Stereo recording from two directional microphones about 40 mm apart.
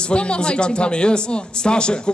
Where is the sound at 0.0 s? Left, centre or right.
Left.